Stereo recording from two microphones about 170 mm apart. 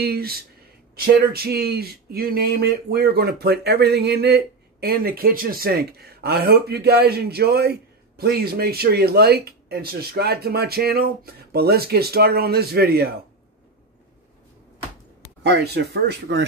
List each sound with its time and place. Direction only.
0.0 s speech: 65° right (ahead or behind)
15.4 s speech: 75° right (ahead or behind)